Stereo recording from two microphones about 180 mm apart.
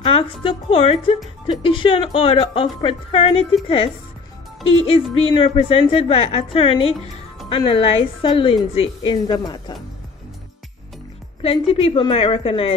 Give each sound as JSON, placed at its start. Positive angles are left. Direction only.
{"t": 0.0, "sound": "a woman's voice", "side_deg": 30}
{"t": 11.4, "sound": "a woman's voice", "side_deg": 30}